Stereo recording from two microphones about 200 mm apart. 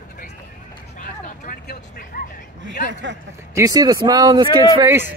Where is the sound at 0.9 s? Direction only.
40° left (ahead or behind).